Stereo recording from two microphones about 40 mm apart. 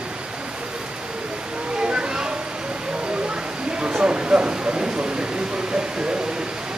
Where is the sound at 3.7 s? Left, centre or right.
Right.